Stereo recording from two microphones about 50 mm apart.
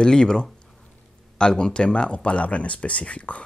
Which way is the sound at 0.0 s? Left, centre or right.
Centre.